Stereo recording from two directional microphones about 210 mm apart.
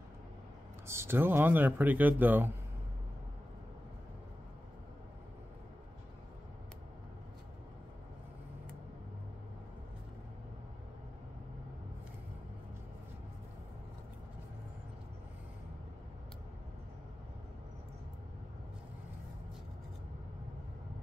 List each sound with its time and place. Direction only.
0.8 s speech: 10° right (ahead or behind)